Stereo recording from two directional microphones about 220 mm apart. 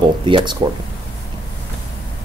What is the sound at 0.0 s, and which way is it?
Speech, 20° right (ahead or behind).